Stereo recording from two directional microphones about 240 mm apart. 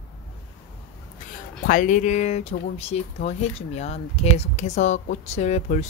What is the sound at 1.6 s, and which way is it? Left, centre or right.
Speech, left.